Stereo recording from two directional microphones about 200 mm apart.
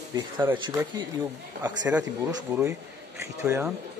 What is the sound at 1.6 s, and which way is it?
Speech, 10° right (ahead or behind).